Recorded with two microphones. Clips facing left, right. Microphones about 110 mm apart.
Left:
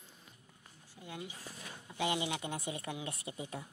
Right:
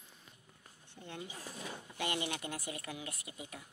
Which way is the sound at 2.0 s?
15° left (ahead or behind).